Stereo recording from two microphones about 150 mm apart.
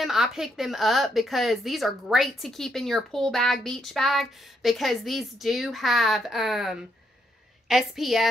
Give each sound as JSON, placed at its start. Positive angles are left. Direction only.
{"t": 0.0, "sound": "a woman's voice", "side_deg": 0}